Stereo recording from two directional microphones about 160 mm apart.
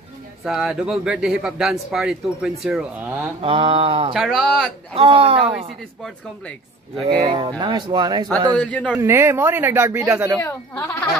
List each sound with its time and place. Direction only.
0.4 s a man's voice: centre (ahead or behind)
3.3 s mantra: 35° right (ahead or behind)
4.1 s a man's voice: centre (ahead or behind)
4.9 s mantra: 35° right (ahead or behind)
7.1 s speech: 35° right (ahead or behind)
8.5 s a man's voice: 10° left (ahead or behind)
8.9 s speech: 15° right (ahead or behind)